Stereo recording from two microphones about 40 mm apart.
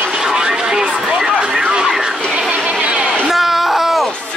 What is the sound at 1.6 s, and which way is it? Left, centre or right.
Vehicle, right.